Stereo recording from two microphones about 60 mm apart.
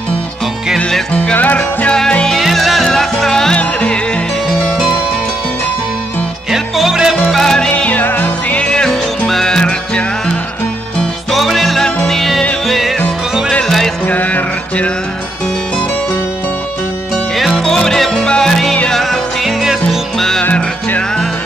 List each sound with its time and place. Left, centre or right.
1.3 s music: left
1.9 s music: centre
2.3 s music: centre
3.5 s music: left
6.5 s music: centre
7.2 s yodeling: centre
7.7 s music: left
8.6 s music: centre
11.3 s music: centre
14.0 s music: left
17.4 s music: centre
18.9 s music: centre
20.2 s music: centre